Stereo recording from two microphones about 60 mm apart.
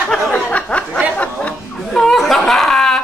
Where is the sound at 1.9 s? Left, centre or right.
Centre.